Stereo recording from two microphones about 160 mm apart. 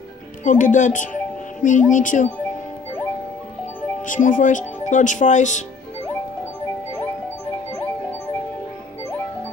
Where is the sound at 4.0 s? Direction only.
55° left (ahead or behind).